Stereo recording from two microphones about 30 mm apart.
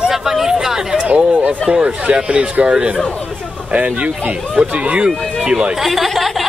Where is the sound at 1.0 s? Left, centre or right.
Right.